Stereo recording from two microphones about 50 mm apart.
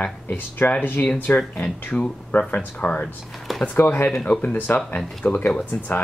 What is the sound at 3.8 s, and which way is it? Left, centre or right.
Speech, left.